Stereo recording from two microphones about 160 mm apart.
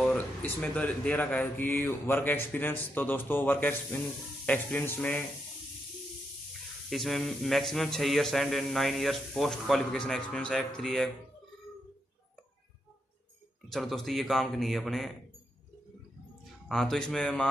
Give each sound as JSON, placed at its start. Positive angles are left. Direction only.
{"t": 0.0, "sound": "speech", "side_deg": 5}
{"t": 6.9, "sound": "speech", "side_deg": 0}
{"t": 13.7, "sound": "speech", "side_deg": 0}
{"t": 16.6, "sound": "speech", "side_deg": 0}